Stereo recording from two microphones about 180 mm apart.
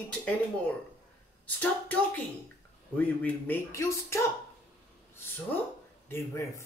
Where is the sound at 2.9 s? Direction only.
10° left (ahead or behind).